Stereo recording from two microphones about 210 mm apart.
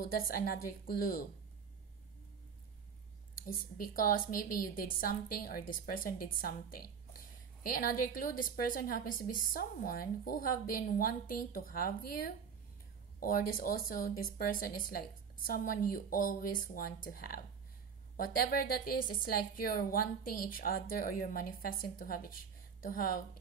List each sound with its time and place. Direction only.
0.0 s a woman's voice: 45° left (ahead or behind)
3.3 s a woman's voice: 45° left (ahead or behind)
13.2 s a woman's voice: 45° left (ahead or behind)